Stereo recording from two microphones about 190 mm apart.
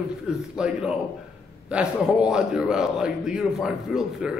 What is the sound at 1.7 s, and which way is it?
A man's voice, 5° right (ahead or behind).